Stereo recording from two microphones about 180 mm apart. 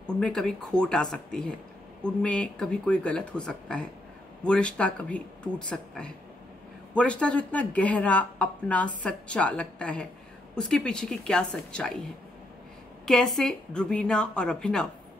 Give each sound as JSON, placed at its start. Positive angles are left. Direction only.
{"t": 0.0, "sound": "speech", "side_deg": 5}
{"t": 13.0, "sound": "speech", "side_deg": 5}